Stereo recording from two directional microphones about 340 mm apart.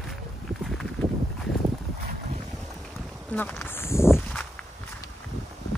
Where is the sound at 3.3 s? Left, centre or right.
Centre.